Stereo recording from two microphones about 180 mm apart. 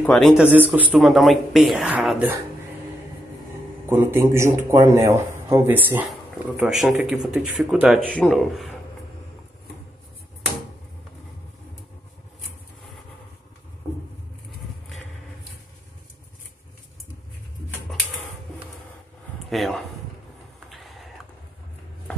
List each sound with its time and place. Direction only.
0.0 s speech: centre (ahead or behind)
0.5 s speech: 10° right (ahead or behind)
3.9 s speech: 15° right (ahead or behind)
19.5 s speech: centre (ahead or behind)
20.7 s a sound: centre (ahead or behind)